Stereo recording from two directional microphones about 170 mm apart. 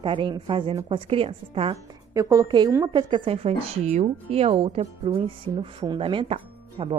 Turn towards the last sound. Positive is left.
turn(degrees=-30)  # may be behind; listen again after turning